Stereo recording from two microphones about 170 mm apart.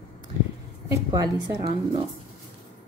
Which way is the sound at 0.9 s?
20° right (ahead or behind).